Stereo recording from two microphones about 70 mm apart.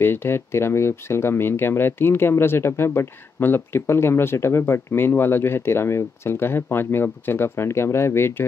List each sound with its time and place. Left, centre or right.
0.0 s speech: left